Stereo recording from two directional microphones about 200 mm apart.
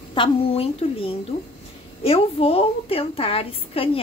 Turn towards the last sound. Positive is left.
turn(degrees=30)  # may be behind; listen again after turning